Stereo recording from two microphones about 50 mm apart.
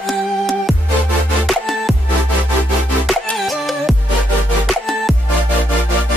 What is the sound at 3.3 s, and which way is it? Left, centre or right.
Music, centre.